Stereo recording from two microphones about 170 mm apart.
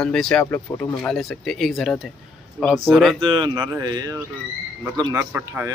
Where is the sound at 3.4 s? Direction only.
20° right (ahead or behind).